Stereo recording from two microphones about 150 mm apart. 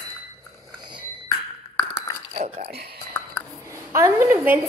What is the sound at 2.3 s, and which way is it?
Speech, 50° right (ahead or behind).